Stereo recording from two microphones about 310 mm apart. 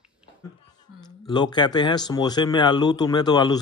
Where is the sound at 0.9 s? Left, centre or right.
Centre.